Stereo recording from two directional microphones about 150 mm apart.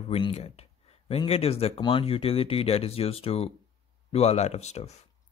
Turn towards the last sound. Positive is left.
turn(degrees=45)  # may be behind; listen again after turning